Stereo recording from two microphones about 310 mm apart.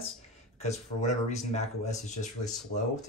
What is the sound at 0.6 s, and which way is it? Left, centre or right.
Speech, left.